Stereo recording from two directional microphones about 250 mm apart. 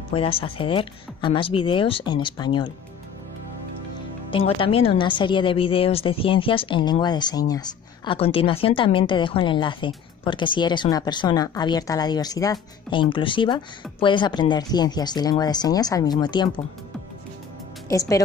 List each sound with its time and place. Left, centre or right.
0.1 s a woman's voice: left
4.3 s a woman's voice: left
17.8 s speech: centre